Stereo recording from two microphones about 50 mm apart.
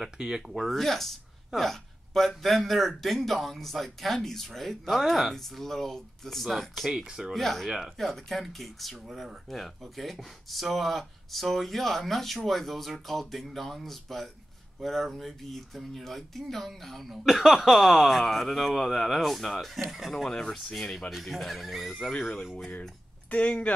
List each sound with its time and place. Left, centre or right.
0.0 s speech: centre
0.7 s speech: centre
6.9 s speech: centre
7.3 s speech: centre
20.1 s speech: centre
23.3 s speech: left